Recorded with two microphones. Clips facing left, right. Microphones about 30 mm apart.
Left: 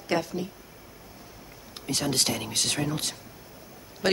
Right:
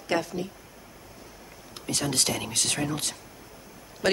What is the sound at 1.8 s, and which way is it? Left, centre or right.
Speech, left.